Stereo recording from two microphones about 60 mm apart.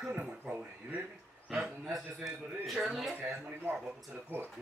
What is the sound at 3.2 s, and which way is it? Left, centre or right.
Speech, right.